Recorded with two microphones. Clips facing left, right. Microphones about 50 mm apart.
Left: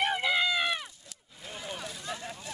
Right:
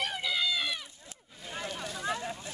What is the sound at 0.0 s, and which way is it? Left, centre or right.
Run, left.